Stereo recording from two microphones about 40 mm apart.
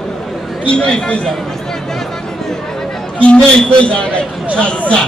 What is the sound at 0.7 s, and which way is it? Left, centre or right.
Speech, left.